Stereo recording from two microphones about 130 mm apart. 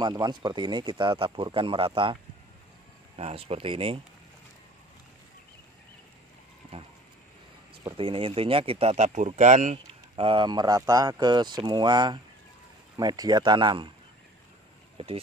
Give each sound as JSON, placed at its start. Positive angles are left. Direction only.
{"t": 0.0, "sound": "speech", "side_deg": -35}
{"t": 3.2, "sound": "speech", "side_deg": -50}
{"t": 8.0, "sound": "speech", "side_deg": -45}
{"t": 10.1, "sound": "speech", "side_deg": -45}